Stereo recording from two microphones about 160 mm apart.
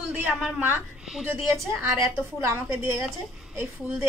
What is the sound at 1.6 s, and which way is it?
A woman's voice, 15° right (ahead or behind).